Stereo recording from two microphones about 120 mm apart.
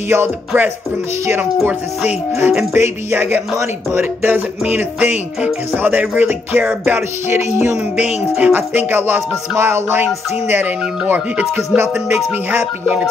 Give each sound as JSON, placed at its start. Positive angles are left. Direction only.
{"t": 0.1, "sound": "speech", "side_deg": -15}